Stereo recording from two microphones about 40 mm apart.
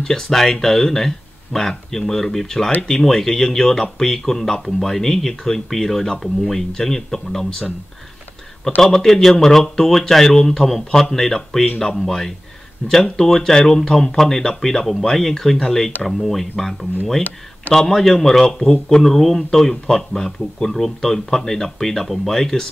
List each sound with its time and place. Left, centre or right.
0.0 s speech: centre
8.8 s speech: centre
17.7 s speech: centre
18.7 s speech: centre
19.0 s speech: centre